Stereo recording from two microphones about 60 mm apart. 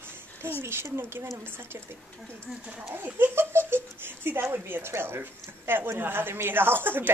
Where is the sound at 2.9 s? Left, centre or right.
Right.